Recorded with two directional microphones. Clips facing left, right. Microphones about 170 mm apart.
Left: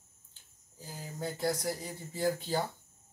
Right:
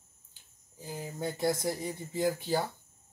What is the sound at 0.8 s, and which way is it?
Speech, 20° right (ahead or behind).